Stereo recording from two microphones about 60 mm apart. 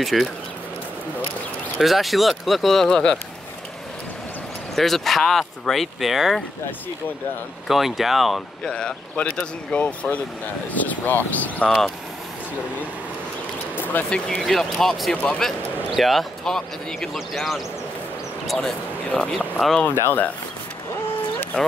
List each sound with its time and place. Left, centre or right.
0.1 s speech: centre
1.8 s speech: centre
4.7 s speech: centre
7.6 s speech: centre
8.7 s speech: centre
14.1 s speech: centre
15.9 s speech: centre
19.1 s speech: centre
19.8 s speech: left